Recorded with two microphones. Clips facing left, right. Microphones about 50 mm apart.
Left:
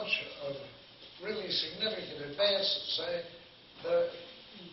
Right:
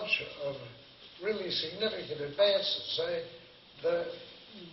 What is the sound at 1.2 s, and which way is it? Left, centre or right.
A man's voice, centre.